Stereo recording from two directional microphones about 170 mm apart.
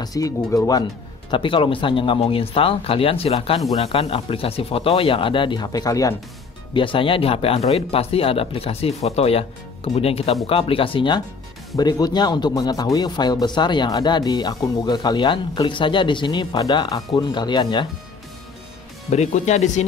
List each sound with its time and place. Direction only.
0.0 s a man's voice: 20° left (ahead or behind)
19.0 s speech: 40° left (ahead or behind)